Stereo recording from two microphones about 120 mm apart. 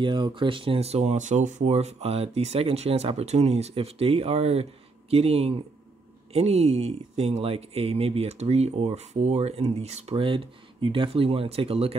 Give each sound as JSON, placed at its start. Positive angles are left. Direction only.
{"t": 0.0, "sound": "speech", "side_deg": -40}